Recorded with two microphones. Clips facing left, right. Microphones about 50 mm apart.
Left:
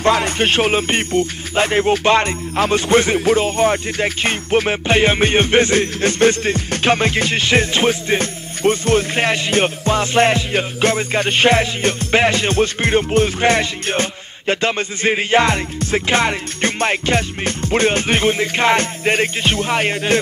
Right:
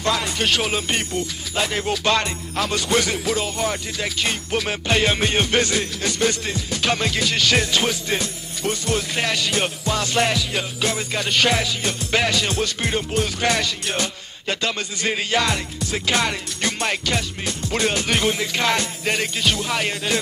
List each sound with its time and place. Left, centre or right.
0.0 s speech: left